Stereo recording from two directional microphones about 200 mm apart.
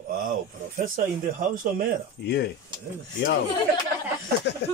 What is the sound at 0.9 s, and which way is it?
Speech, 40° right (ahead or behind).